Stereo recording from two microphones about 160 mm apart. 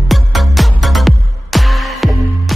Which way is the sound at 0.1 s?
Centre (ahead or behind).